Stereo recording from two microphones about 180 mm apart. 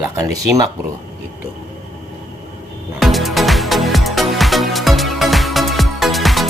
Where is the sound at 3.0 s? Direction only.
Centre (ahead or behind).